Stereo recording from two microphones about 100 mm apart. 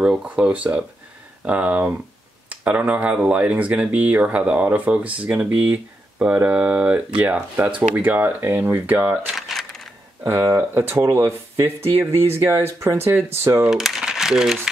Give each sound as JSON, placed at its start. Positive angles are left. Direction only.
{"t": 0.0, "sound": "speech", "side_deg": -10}
{"t": 9.3, "sound": "a sound", "side_deg": 0}
{"t": 10.5, "sound": "speech", "side_deg": -25}
{"t": 13.7, "sound": "speech", "side_deg": -5}